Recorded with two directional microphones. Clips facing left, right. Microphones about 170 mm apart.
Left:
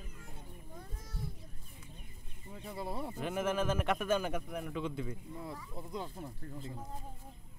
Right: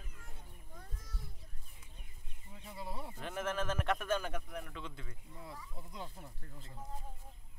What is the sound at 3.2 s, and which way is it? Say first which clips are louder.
A man's voice: left 4 dB; 10° left (ahead or behind).